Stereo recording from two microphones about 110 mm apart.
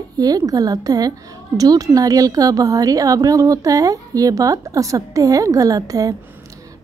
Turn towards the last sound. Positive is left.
turn(degrees=-30)  # may be behind; listen again after turning